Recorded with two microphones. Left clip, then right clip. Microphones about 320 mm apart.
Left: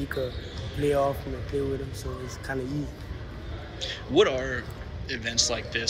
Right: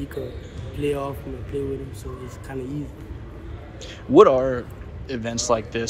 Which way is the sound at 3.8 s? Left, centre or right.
Centre.